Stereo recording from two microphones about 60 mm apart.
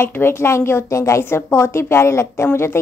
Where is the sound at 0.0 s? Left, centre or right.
Left.